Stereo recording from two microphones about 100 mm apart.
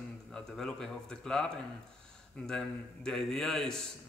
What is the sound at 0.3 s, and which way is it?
A man's voice, 5° left (ahead or behind).